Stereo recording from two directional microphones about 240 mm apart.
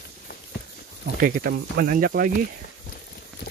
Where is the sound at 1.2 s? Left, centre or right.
Right.